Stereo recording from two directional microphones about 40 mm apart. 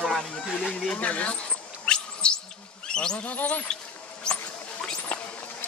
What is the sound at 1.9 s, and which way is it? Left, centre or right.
Insect, left.